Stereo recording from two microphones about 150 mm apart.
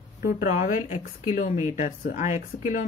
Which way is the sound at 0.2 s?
70° left (ahead or behind).